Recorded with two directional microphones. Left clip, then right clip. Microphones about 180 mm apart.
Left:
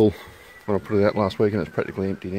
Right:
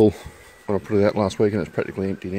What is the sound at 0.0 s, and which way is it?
Speech, 15° right (ahead or behind).